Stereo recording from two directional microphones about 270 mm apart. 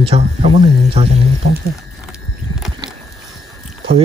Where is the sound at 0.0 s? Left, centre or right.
Right.